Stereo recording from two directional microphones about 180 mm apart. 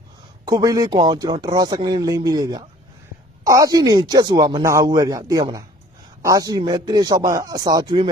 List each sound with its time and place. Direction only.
0.5 s speech: 20° right (ahead or behind)